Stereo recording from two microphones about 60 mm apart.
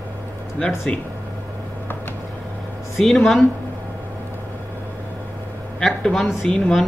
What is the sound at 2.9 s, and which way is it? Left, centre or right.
Speech, centre.